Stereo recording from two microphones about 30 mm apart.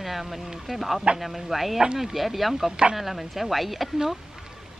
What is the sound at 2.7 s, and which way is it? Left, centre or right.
Speech, right.